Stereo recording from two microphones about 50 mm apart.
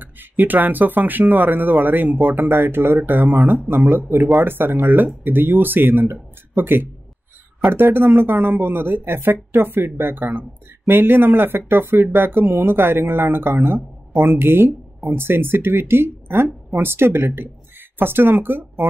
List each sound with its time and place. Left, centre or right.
0.0 s speech: right